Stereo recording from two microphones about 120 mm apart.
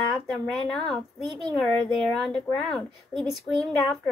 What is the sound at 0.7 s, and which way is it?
A woman's voice, 5° left (ahead or behind).